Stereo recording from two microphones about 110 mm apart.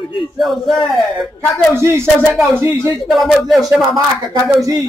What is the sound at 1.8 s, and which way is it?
Speech, 25° right (ahead or behind).